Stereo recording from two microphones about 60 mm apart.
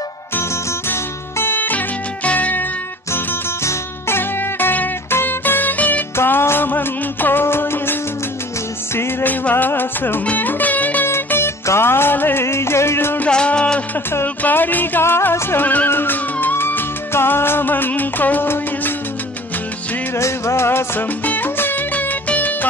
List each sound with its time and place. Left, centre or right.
1.4 s music: left
3.6 s music: left
6.1 s music: left
9.3 s music: left
11.1 s music: left
13.3 s music: centre
14.2 s music: left
20.2 s music: left
21.2 s music: left